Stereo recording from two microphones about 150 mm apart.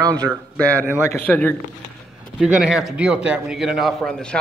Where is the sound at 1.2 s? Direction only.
10° left (ahead or behind).